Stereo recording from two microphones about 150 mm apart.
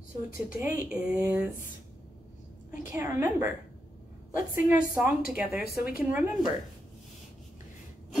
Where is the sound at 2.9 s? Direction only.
15° right (ahead or behind).